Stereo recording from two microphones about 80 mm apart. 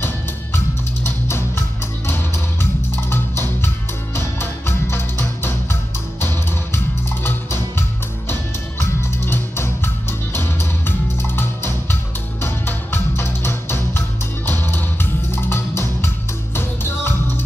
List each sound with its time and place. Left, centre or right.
1.0 s music: left
3.6 s music: left